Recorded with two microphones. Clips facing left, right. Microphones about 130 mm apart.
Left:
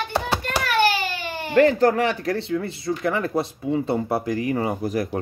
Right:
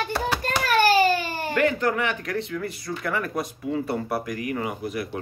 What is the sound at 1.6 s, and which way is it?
Speech, 35° left (ahead or behind).